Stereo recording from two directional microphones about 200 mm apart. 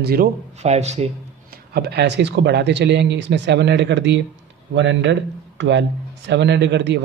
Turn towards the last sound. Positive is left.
turn(degrees=-60)  # may be behind; listen again after turning